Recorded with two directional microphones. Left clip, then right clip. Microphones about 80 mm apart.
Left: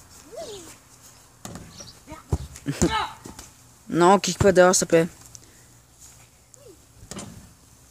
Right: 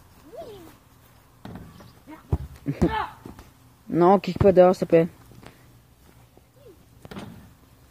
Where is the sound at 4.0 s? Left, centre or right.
Centre.